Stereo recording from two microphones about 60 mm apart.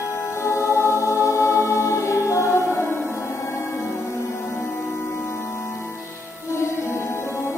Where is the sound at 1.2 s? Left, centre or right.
Left.